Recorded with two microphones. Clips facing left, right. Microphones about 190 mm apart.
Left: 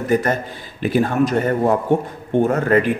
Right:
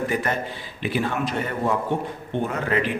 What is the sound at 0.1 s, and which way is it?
A man's voice, 40° left (ahead or behind).